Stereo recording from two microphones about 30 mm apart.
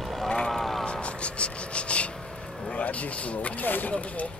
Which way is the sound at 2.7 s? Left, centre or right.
Left.